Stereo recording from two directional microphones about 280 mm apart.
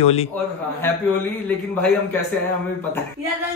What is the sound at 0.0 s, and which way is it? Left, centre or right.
Speech, left.